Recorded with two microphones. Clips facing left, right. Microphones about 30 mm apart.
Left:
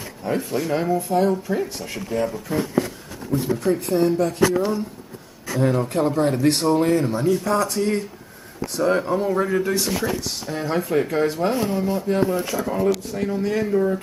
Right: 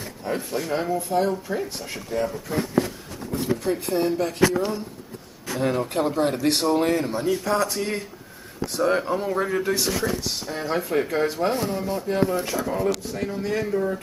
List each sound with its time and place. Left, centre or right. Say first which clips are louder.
0.2 s speech: left 4 dB; centre
4.2 s speech: left 2 dB; centre
5.9 s speech: left 2 dB; centre
12.6 s speech: left 5 dB; centre
12.9 s speech: left 4 dB; centre